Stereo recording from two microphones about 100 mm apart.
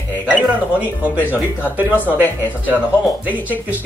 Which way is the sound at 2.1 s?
20° right (ahead or behind).